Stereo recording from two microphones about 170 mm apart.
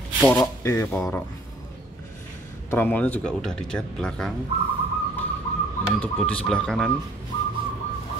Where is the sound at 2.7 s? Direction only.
10° left (ahead or behind).